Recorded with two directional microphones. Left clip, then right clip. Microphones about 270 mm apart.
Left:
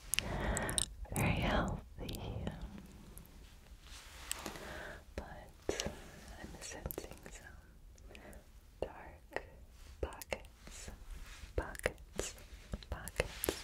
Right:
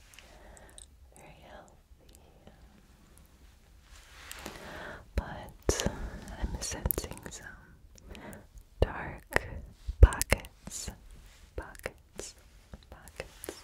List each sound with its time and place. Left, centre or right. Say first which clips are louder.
0.1 s whispering: left 17 dB; left
4.3 s a sound: left 1 dB; centre
4.6 s whispering: right 4 dB; right
5.1 s whispering: right 8 dB; right
8.1 s a sound: right 7 dB; right
8.7 s whispering: right 11 dB; right
11.5 s whispering: left 2 dB; centre
12.9 s whispering: left 6 dB; left